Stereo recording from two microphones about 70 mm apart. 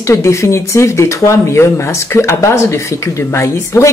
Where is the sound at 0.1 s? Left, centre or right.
Left.